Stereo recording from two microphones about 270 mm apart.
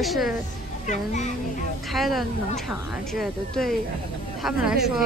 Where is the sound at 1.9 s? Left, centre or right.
Centre.